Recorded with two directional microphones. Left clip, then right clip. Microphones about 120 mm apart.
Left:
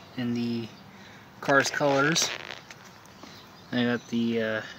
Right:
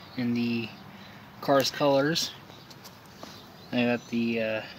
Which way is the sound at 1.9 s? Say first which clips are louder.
Even; 75° left (ahead or behind).